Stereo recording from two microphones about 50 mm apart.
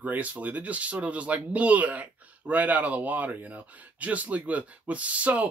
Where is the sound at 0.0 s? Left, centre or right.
Right.